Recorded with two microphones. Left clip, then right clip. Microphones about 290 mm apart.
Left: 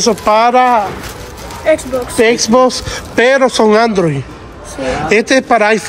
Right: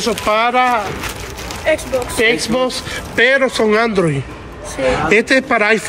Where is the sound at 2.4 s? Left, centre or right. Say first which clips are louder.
Left 7 dB; left.